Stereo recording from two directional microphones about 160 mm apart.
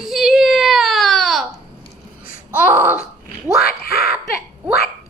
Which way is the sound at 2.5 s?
15° right (ahead or behind).